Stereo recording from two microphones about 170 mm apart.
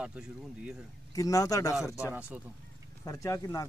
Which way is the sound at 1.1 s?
20° left (ahead or behind).